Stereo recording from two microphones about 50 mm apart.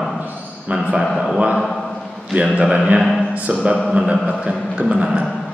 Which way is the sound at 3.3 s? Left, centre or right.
Right.